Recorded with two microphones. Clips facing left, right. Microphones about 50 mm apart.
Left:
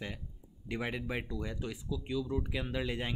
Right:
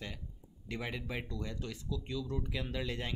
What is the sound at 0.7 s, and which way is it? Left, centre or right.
Speech, centre.